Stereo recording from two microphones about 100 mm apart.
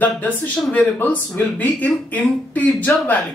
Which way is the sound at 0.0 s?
15° left (ahead or behind).